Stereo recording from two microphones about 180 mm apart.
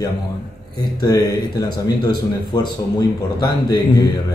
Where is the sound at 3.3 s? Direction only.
20° left (ahead or behind).